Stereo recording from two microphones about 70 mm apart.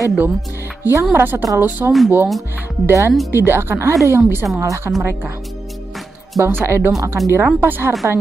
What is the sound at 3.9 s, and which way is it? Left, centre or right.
A woman's voice, right.